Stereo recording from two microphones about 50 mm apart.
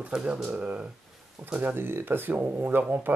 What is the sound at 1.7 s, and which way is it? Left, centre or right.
Speech, right.